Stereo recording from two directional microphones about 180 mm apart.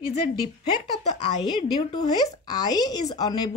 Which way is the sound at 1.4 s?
25° left (ahead or behind).